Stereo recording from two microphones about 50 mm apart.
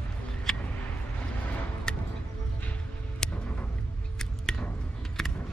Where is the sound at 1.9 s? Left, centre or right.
Centre.